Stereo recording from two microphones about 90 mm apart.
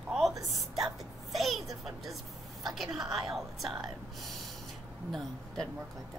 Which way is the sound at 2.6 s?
Centre (ahead or behind).